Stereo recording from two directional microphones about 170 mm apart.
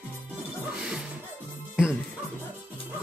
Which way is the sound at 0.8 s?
5° right (ahead or behind).